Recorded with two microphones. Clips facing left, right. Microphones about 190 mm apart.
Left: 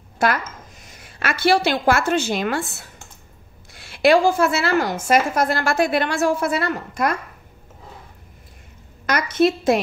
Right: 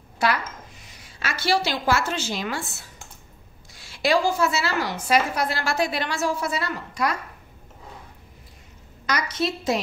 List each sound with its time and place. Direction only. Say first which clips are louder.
0.2 s a woman's voice: left 3 dB; 50° left (ahead or behind)
9.0 s a woman's voice: left 8 dB; 55° left (ahead or behind)